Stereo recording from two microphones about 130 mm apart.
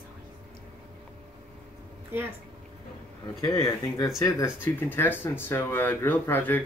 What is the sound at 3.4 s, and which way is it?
Speech, 25° left (ahead or behind).